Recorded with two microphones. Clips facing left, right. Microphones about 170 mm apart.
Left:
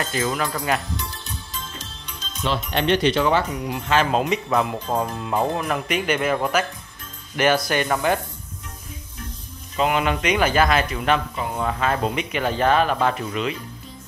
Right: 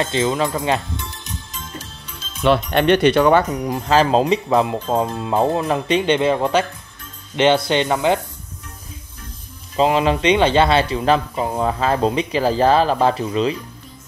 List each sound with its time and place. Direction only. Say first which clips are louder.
0.0 s music: right 5 dB; 25° right (ahead or behind)
2.4 s speech: right 7 dB; 60° right (ahead or behind)
3.6 s speech: right 5 dB; 40° right (ahead or behind); by 8.2 s 20° right (ahead or behind)
9.8 s speech: right 5 dB; 30° right (ahead or behind)